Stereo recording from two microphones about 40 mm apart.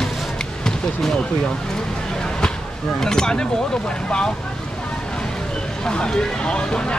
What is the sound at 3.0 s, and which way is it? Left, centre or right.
Speech, centre.